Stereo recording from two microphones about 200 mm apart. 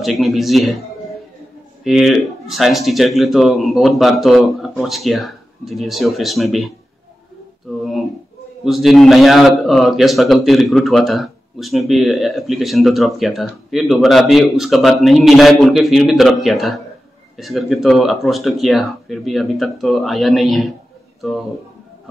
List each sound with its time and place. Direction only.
0.2 s a man's voice: centre (ahead or behind)
1.9 s a man's voice: centre (ahead or behind)
8.6 s a man's voice: centre (ahead or behind)